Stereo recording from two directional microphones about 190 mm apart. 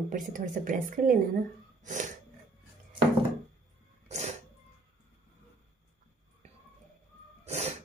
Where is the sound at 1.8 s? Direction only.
40° right (ahead or behind).